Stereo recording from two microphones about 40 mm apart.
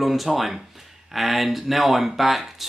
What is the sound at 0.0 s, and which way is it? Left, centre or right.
Speech, centre.